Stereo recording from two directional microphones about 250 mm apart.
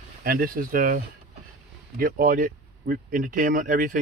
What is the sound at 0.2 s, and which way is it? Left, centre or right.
Speech, right.